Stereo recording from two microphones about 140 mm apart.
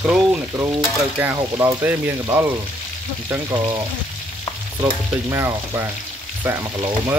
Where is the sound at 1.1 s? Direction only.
15° right (ahead or behind).